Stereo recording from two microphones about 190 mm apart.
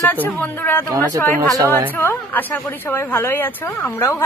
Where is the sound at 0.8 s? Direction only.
20° right (ahead or behind).